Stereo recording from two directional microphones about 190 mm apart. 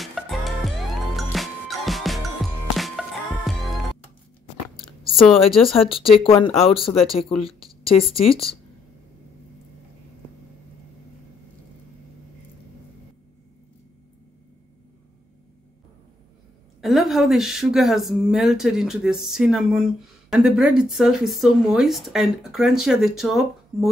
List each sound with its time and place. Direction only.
0.0 s music: centre (ahead or behind)
5.7 s speech: 30° left (ahead or behind)
16.8 s a woman's voice: centre (ahead or behind)